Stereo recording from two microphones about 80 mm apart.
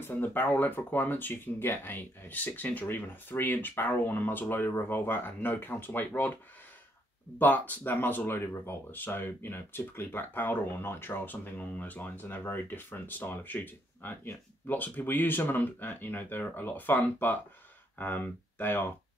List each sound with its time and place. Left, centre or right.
0.0 s speech: left
7.3 s speech: left